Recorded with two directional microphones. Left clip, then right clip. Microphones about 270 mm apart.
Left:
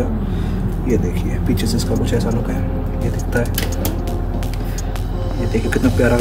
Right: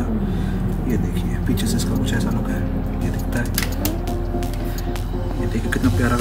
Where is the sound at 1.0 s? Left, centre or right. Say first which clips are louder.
Left 3 dB; centre.